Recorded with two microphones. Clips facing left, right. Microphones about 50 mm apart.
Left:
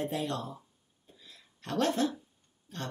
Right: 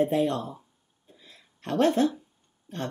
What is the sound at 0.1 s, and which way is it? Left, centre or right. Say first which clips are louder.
Speech: right 8 dB; right.